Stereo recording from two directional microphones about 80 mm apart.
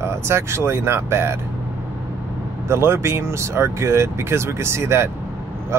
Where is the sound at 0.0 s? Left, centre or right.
Right.